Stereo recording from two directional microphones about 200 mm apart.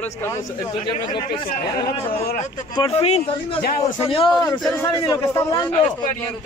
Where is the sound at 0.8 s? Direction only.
20° left (ahead or behind).